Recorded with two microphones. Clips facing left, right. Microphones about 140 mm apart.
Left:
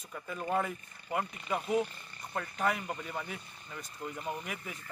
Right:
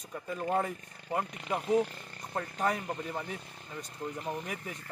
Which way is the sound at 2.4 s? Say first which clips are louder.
Right 1 dB; 35° right (ahead or behind).